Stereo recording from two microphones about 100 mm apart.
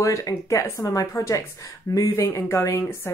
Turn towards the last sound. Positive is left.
turn(degrees=25)  # may be behind; listen again after turning